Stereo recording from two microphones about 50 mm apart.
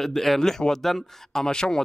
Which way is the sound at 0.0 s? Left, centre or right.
Centre.